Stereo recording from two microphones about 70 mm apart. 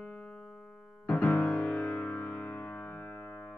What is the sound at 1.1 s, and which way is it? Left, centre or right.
Music, left.